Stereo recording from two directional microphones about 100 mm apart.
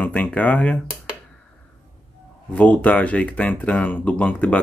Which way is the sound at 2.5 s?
15° left (ahead or behind).